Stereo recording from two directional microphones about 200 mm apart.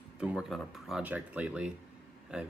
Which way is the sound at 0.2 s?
5° right (ahead or behind).